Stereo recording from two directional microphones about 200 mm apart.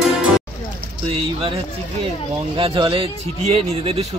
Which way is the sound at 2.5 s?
25° right (ahead or behind).